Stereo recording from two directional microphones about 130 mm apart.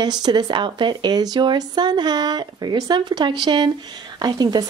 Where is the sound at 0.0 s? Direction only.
30° right (ahead or behind).